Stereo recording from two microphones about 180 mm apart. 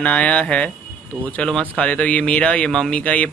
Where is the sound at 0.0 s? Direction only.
5° left (ahead or behind).